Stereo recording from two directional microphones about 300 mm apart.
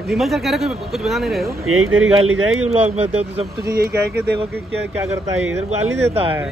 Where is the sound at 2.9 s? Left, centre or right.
Right.